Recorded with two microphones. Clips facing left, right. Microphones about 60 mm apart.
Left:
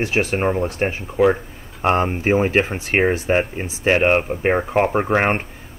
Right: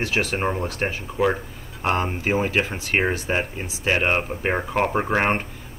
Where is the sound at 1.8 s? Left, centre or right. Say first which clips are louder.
Left 5 dB; left.